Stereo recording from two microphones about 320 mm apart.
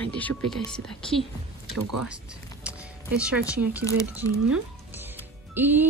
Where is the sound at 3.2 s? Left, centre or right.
Centre.